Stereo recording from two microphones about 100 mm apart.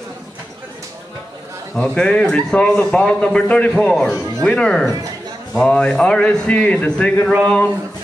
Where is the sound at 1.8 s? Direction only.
10° left (ahead or behind).